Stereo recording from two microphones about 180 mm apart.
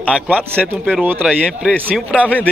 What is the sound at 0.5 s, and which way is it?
Speech, 10° right (ahead or behind).